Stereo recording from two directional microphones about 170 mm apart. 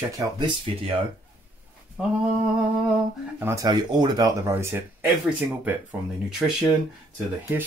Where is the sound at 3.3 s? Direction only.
15° right (ahead or behind).